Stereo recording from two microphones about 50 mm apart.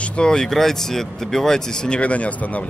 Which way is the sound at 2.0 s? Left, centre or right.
Left.